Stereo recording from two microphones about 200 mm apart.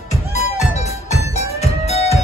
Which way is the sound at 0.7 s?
35° left (ahead or behind).